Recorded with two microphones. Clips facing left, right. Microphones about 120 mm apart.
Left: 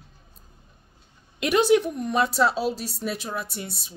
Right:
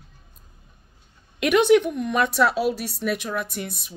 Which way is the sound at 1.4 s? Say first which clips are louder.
Right 3 dB; 35° left (ahead or behind).